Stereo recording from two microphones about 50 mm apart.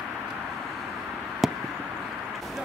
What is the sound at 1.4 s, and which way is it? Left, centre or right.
Chop, centre.